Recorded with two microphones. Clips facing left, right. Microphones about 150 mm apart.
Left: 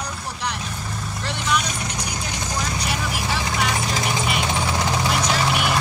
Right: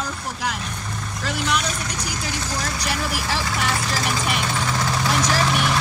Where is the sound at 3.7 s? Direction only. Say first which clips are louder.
Even; 20° left (ahead or behind).